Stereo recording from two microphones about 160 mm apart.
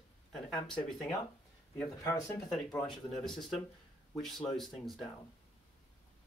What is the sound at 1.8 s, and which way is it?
Speech, 15° left (ahead or behind).